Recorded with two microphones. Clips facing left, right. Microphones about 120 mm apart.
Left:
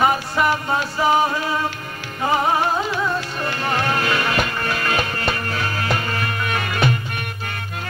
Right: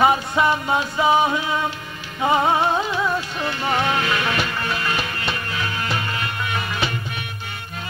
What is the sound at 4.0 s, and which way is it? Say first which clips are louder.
Music: left 2 dB; 45° left (ahead or behind).